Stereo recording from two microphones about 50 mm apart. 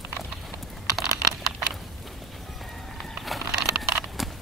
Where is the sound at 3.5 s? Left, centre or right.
Centre.